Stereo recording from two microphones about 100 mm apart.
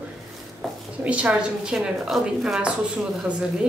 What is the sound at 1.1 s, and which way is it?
A woman's voice, 15° right (ahead or behind).